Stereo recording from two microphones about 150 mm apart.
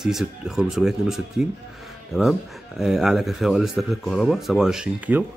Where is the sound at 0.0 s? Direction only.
Centre (ahead or behind).